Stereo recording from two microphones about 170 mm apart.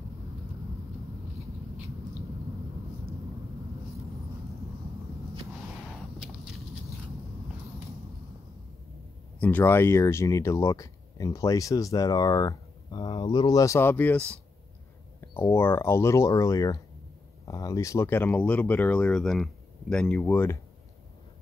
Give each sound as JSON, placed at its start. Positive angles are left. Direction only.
{"t": 9.4, "sound": "speech", "side_deg": 10}